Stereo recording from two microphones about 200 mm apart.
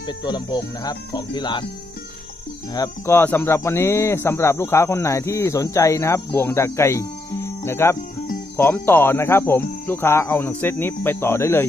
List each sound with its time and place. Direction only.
0.2 s speech: 20° left (ahead or behind)
2.7 s speech: 15° left (ahead or behind)